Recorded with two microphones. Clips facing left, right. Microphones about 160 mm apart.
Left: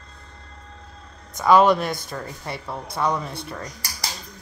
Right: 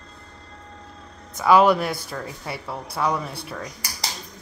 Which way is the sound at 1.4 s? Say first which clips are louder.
Even; 5° right (ahead or behind).